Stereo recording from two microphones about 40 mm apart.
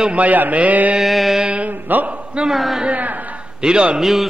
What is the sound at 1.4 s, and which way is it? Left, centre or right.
Speech, right.